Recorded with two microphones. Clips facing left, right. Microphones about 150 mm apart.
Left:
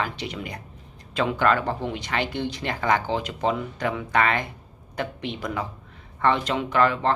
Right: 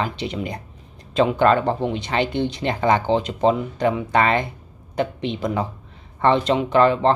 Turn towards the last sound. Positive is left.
turn(degrees=-25)  # may be behind; listen again after turning